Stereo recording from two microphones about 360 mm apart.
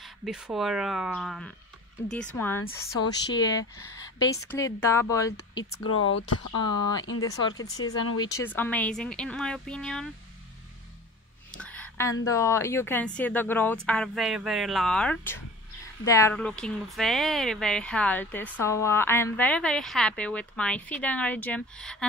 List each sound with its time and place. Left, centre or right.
0.0 s a woman's voice: centre
5.9 s speech: left
8.2 s speech: centre
11.5 s a sound: centre
12.3 s a woman's voice: centre